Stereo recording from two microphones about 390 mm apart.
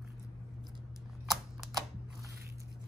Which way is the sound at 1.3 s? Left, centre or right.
Centre.